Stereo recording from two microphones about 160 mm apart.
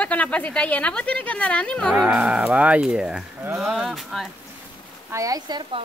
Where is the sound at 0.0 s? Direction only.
10° left (ahead or behind).